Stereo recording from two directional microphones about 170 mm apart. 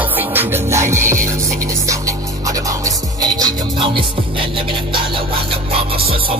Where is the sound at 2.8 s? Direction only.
20° right (ahead or behind).